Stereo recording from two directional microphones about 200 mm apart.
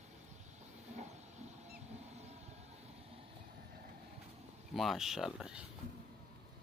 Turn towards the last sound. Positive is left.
turn(degrees=-5)  # may be behind; listen again after turning